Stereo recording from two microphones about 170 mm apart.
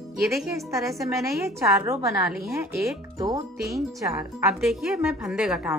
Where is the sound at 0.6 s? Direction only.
20° right (ahead or behind).